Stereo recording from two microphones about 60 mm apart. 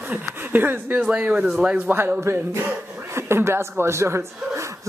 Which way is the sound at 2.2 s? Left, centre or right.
Right.